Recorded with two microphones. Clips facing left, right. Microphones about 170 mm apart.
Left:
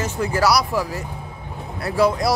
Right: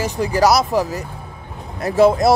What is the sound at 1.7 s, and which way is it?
Speech, 20° right (ahead or behind).